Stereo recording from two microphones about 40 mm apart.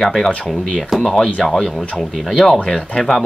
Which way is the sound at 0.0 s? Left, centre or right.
Centre.